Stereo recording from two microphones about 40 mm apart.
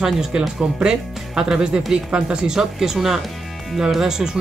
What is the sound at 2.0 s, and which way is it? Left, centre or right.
Speech, right.